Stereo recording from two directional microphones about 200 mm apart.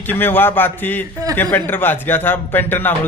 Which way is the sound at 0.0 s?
10° left (ahead or behind).